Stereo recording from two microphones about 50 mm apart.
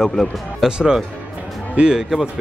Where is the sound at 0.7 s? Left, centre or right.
Centre.